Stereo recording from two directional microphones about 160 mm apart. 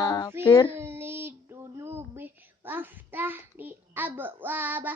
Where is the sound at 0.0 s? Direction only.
25° left (ahead or behind).